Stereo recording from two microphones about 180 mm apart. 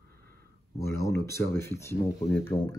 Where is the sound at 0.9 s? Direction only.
15° left (ahead or behind).